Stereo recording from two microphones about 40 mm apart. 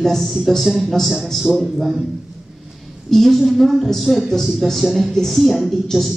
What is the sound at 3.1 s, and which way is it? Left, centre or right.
A man's voice, centre.